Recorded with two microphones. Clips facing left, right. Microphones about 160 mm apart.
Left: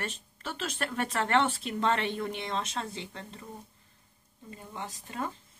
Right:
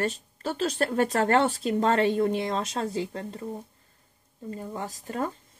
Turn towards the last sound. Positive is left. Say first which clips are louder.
# right 6 dB
turn(degrees=-40)  # may be behind; listen again after turning